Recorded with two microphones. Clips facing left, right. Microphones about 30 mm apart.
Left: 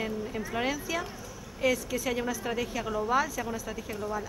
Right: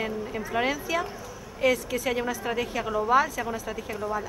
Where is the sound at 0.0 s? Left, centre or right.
Centre.